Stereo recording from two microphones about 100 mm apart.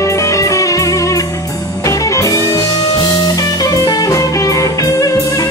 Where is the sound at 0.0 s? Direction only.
30° left (ahead or behind).